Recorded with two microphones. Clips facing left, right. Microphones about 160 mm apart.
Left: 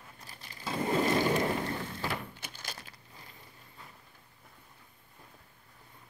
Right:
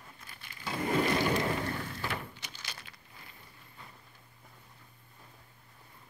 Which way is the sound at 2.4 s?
50° left (ahead or behind).